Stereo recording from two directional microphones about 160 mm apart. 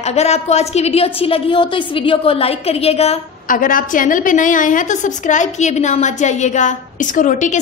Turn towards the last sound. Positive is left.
turn(degrees=50)  # may be behind; listen again after turning